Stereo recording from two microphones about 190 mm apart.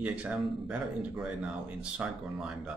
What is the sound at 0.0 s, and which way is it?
Speech, 5° right (ahead or behind).